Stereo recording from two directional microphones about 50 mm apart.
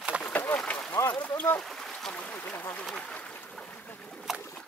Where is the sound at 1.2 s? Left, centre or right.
Left.